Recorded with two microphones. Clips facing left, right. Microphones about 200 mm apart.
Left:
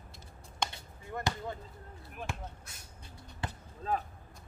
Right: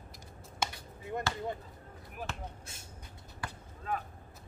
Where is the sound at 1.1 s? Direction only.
20° right (ahead or behind).